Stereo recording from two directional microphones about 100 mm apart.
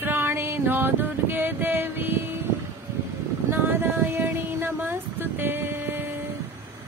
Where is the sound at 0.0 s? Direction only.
25° right (ahead or behind).